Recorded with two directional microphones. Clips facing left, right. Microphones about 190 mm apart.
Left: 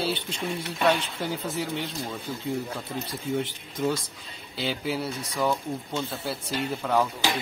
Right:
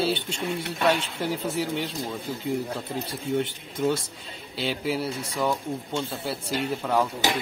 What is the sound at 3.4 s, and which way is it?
Speech, centre (ahead or behind).